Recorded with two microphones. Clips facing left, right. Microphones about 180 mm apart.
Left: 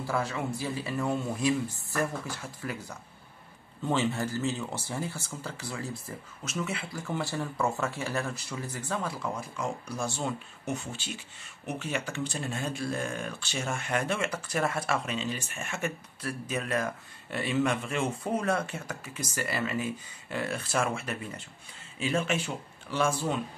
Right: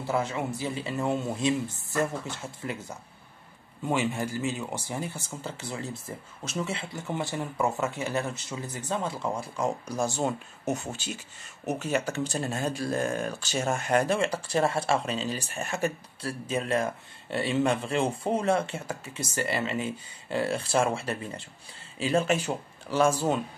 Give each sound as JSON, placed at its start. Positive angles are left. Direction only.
{"t": 0.0, "sound": "speech", "side_deg": -20}
{"t": 3.8, "sound": "speech", "side_deg": -15}
{"t": 9.8, "sound": "speech", "side_deg": -40}